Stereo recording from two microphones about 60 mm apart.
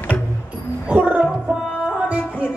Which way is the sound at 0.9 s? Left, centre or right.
Right.